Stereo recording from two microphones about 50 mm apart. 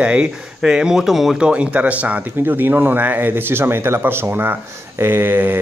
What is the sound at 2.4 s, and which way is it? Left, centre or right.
Speech, right.